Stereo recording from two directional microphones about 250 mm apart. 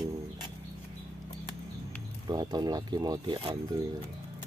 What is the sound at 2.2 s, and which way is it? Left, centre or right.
Speech, centre.